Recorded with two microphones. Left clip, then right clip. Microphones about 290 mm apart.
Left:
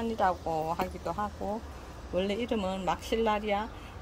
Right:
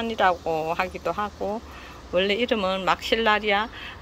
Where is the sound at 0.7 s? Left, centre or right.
Right.